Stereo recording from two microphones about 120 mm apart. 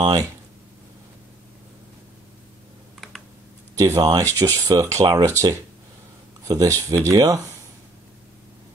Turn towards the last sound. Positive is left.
turn(degrees=-30)  # may be behind; listen again after turning